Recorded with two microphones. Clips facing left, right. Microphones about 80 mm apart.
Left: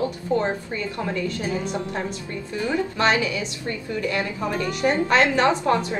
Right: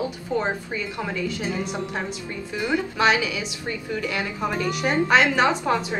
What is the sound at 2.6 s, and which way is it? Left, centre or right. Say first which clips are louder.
A woman's voice: right 1 dB; centre.